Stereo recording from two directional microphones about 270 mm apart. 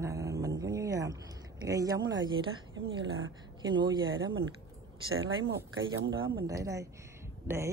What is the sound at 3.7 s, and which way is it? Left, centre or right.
Speech, centre.